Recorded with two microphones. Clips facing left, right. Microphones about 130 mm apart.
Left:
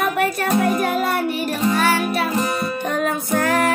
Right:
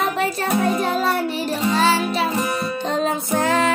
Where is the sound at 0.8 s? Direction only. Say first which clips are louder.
Even; 25° right (ahead or behind).